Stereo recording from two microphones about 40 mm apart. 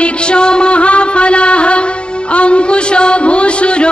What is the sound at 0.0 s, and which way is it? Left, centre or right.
Music, left.